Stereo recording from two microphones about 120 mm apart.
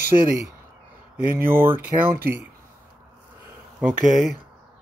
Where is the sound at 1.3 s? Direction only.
20° right (ahead or behind).